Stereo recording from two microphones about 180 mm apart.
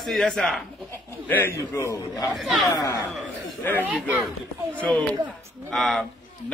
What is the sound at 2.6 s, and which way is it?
Speech, 20° left (ahead or behind).